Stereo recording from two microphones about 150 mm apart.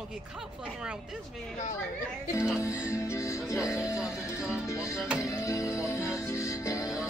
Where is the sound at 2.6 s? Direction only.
20° left (ahead or behind).